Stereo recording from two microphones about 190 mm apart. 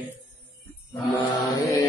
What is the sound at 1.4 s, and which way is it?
Mantra, 15° left (ahead or behind).